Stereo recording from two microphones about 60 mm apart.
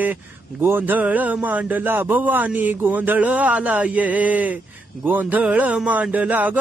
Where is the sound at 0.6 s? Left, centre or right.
Right.